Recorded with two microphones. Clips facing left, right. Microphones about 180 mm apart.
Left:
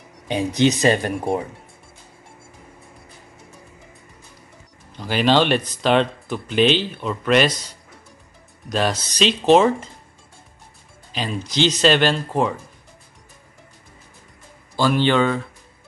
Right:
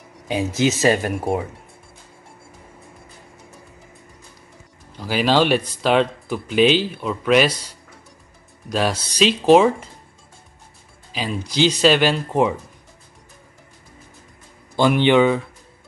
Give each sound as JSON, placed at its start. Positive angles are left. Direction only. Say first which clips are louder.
{"t": 0.3, "sound": "speech", "louder": "left 1 dB", "side_deg": -5}
{"t": 4.9, "sound": "speech", "louder": "even", "side_deg": -5}
{"t": 8.6, "sound": "speech", "louder": "even", "side_deg": -5}
{"t": 11.1, "sound": "speech", "louder": "right 1 dB", "side_deg": -5}
{"t": 14.8, "sound": "speech", "louder": "right 3 dB", "side_deg": -15}